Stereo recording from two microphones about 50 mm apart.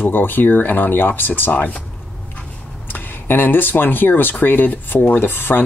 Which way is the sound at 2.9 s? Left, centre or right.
Left.